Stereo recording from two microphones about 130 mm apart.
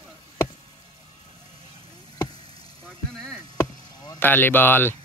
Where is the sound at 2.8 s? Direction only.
5° left (ahead or behind).